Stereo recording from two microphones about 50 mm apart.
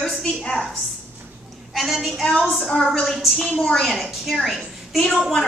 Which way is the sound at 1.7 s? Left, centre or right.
Centre.